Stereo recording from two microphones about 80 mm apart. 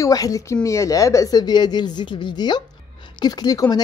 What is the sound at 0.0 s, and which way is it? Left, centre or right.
Speech, left.